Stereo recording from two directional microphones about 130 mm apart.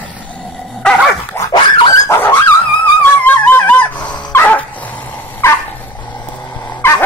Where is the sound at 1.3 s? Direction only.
25° left (ahead or behind).